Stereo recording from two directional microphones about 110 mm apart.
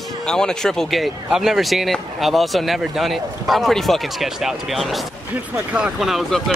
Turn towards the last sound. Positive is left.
turn(degrees=5)  # may be behind; listen again after turning